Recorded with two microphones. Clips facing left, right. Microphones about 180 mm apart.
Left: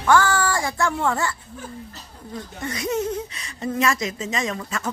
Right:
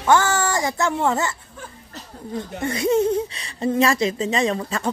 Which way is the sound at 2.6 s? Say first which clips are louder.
Right 6 dB; 30° right (ahead or behind).